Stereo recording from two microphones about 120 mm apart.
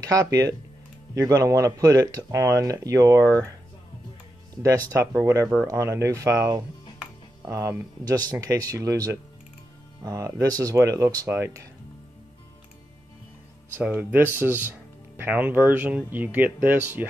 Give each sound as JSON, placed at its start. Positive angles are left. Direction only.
{"t": 0.0, "sound": "speech", "side_deg": -30}
{"t": 4.6, "sound": "speech", "side_deg": -25}
{"t": 8.0, "sound": "speech", "side_deg": -30}
{"t": 13.7, "sound": "speech", "side_deg": -15}